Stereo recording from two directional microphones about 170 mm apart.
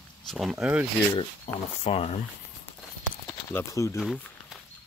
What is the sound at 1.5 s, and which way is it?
Speech, 40° left (ahead or behind).